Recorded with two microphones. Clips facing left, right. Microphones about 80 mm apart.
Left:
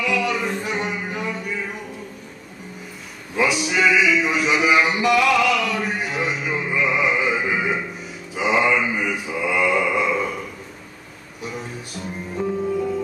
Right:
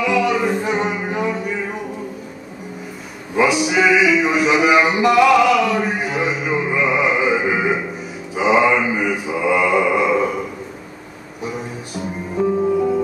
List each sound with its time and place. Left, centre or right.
0.0 s music: centre
3.4 s music: centre
4.2 s a sound: centre
8.4 s music: centre
9.3 s mantra: centre
12.4 s music: centre